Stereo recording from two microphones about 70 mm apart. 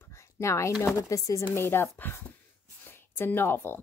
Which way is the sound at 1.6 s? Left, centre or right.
Left.